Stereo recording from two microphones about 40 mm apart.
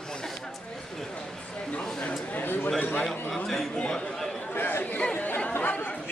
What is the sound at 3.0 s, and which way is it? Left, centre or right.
Speech, centre.